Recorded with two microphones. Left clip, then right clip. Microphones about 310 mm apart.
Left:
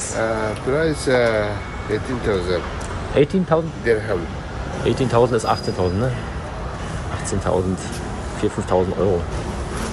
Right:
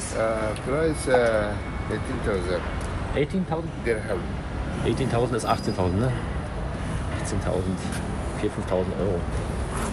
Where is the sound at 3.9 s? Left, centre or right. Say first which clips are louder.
Left 7 dB; left.